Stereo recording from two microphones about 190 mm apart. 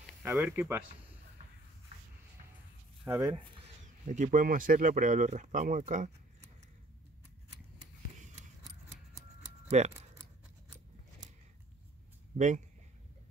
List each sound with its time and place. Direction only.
0.2 s speech: 10° right (ahead or behind)
3.1 s speech: 15° right (ahead or behind)
3.6 s speech: 40° right (ahead or behind)
9.7 s speech: 35° right (ahead or behind)
12.4 s speech: 40° right (ahead or behind)